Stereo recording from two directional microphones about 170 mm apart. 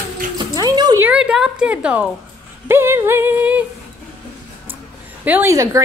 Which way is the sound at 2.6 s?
15° right (ahead or behind).